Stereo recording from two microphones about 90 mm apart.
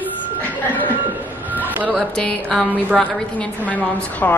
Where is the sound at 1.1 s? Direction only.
20° right (ahead or behind).